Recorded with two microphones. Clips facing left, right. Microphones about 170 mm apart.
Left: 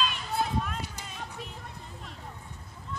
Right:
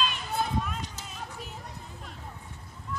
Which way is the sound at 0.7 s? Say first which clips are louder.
Even; 10° left (ahead or behind).